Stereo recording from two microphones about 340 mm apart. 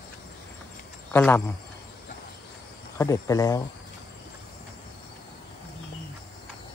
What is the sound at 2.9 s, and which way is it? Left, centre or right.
Speech, centre.